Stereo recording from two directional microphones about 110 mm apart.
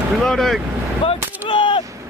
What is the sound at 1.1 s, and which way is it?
Gunshot, 50° left (ahead or behind).